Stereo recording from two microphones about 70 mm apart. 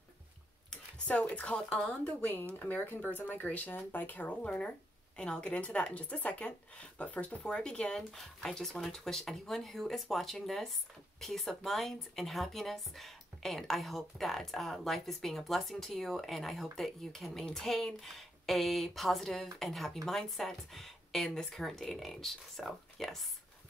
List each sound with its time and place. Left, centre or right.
0.7 s speech: centre
2.6 s speech: left; by 23.2 s centre